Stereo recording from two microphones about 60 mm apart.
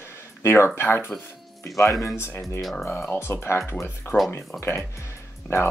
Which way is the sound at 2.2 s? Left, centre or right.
Left.